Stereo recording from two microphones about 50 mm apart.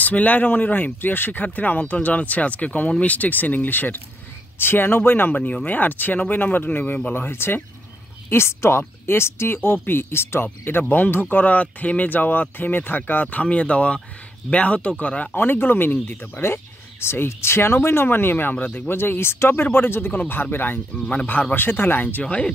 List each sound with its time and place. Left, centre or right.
0.0 s a woman's voice: left
5.3 s a woman's voice: left
7.2 s speech: left
8.3 s a woman's voice: left
15.3 s speech: left
16.3 s speech: left
18.9 s a woman's voice: left
22.2 s speech: left